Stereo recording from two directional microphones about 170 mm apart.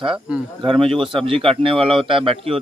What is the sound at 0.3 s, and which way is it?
Speech, 5° right (ahead or behind).